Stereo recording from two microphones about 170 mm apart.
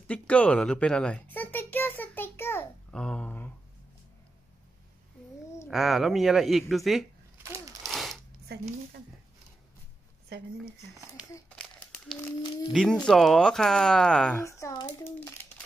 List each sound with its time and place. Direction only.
0.0 s a sound: 5° left (ahead or behind)
5.7 s speech: centre (ahead or behind)
7.4 s a sound: 15° right (ahead or behind)
7.8 s a sound: centre (ahead or behind)
10.3 s speech: 75° right (ahead or behind)
11.4 s crumpling: 5° left (ahead or behind)
12.2 s speech: 25° left (ahead or behind)
12.7 s speech: 5° left (ahead or behind)
14.4 s a child's voice: 20° left (ahead or behind)